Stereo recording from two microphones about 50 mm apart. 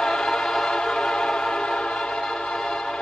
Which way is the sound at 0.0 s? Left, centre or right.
Centre.